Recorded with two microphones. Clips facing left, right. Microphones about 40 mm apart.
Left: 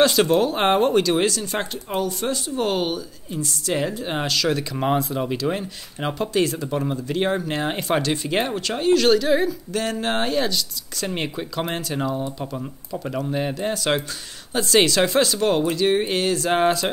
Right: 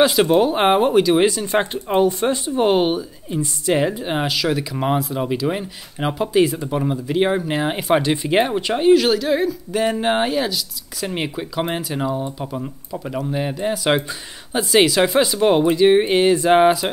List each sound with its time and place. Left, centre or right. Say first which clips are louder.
0.0 s speech: right 3 dB; centre
9.7 s speech: right 5 dB; centre